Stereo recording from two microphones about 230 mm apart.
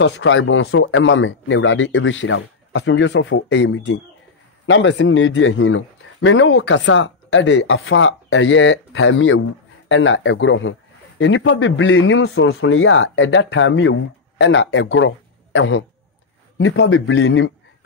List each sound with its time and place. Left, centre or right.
0.0 s a man's voice: left